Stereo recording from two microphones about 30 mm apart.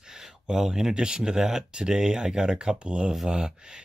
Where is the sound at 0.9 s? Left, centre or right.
Right.